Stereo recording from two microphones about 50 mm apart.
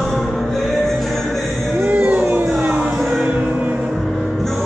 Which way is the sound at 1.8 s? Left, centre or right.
Right.